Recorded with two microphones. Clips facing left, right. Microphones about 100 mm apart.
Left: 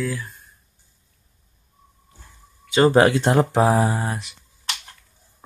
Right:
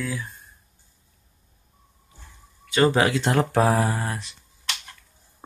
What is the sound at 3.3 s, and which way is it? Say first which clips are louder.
Speech: left 3 dB; 20° left (ahead or behind).